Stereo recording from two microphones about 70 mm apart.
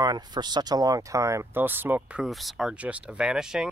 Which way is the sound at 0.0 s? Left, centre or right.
Right.